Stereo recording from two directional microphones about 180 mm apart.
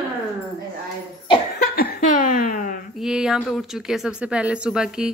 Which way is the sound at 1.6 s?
55° left (ahead or behind).